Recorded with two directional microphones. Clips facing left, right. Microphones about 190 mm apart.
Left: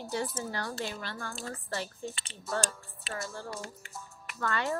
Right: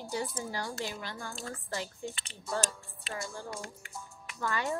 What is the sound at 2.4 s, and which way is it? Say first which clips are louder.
Child singing: left 1 dB; centre (ahead or behind).